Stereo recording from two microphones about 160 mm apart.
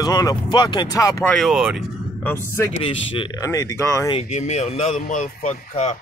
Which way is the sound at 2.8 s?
35° left (ahead or behind).